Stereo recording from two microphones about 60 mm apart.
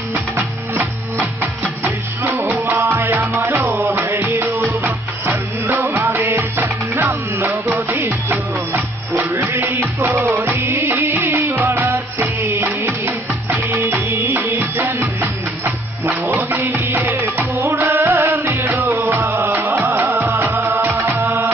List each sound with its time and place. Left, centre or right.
0.1 s music: right